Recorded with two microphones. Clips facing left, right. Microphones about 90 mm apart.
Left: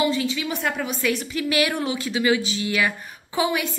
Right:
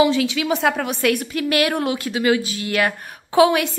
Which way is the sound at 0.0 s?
90° right.